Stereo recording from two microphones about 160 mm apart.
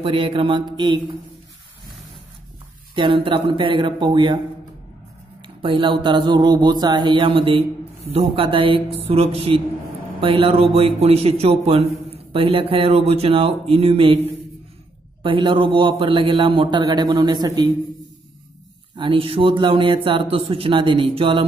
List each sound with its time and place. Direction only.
0.0 s a man's voice: 35° right (ahead or behind)
2.9 s a man's voice: 30° right (ahead or behind)
5.4 s a man's voice: 30° right (ahead or behind)
15.2 s a man's voice: 30° right (ahead or behind)
18.9 s a man's voice: 35° right (ahead or behind)